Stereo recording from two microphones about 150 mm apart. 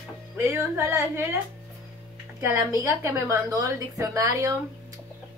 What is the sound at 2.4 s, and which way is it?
A woman's voice, 20° right (ahead or behind).